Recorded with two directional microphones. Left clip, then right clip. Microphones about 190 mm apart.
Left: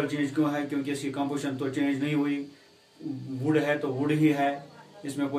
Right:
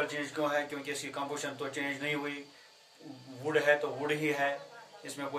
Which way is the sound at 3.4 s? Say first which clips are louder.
Left 2 dB; 20° right (ahead or behind).